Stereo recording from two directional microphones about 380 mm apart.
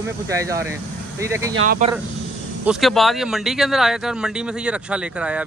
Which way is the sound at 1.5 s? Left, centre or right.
Right.